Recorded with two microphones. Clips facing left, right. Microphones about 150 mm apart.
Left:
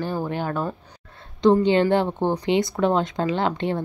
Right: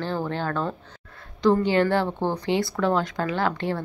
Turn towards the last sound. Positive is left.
turn(degrees=20)  # may be behind; listen again after turning